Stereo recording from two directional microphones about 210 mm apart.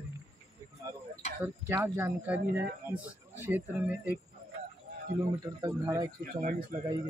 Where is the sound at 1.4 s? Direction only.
10° right (ahead or behind).